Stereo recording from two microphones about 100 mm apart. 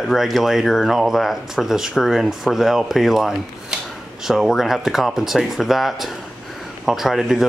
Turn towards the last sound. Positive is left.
turn(degrees=-5)  # may be behind; listen again after turning